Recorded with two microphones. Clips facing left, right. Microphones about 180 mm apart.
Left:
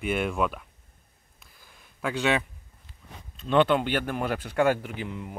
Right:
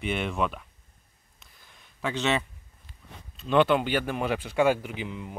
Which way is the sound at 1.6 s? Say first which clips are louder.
Even; 5° left (ahead or behind).